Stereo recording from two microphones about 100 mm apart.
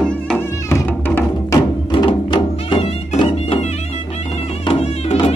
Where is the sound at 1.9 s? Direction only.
55° left (ahead or behind).